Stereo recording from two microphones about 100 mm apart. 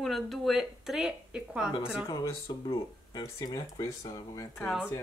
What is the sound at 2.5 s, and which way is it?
Speech, 45° left (ahead or behind).